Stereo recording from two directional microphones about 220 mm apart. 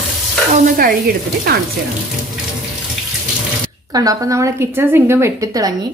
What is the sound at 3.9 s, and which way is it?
A woman's voice, 15° right (ahead or behind).